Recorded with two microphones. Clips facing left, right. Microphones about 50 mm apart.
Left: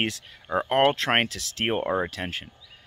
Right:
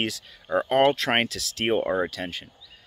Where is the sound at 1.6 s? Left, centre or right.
Centre.